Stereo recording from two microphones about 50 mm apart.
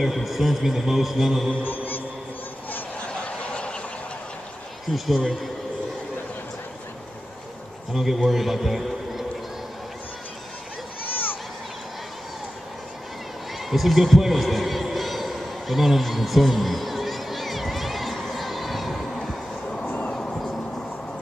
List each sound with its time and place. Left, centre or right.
0.0 s a man's voice: centre
1.6 s music: left
3.1 s snicker: left
4.8 s a man's voice: centre
7.9 s a man's voice: centre
13.7 s a sound: centre
19.8 s vehicle: left
20.1 s music: left
20.3 s vehicle: centre